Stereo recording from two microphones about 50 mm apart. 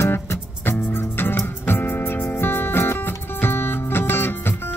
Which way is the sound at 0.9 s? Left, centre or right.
Left.